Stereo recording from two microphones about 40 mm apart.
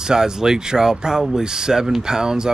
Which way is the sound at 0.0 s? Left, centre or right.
Centre.